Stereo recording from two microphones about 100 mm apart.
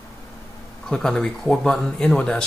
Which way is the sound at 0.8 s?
5° left (ahead or behind).